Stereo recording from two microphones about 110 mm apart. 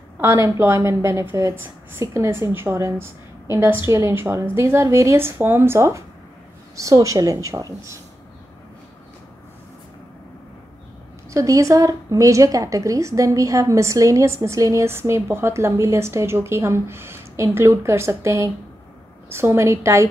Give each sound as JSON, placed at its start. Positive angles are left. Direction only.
{"t": 0.2, "sound": "a woman's voice", "side_deg": -25}
{"t": 11.2, "sound": "a woman's voice", "side_deg": -30}